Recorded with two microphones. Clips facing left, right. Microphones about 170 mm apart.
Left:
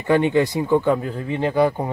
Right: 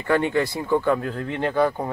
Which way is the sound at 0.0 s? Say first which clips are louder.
Left 4 dB; 20° left (ahead or behind).